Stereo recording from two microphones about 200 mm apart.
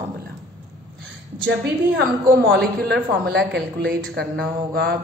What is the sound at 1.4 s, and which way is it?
A woman's voice, 60° right (ahead or behind).